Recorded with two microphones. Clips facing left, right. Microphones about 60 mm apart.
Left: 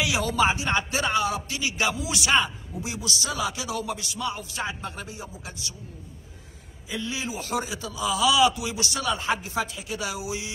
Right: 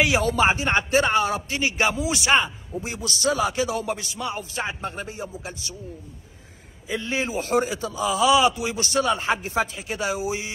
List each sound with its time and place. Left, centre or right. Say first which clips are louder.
0.0 s a man's voice: right 4 dB; right
6.9 s a man's voice: right 5 dB; right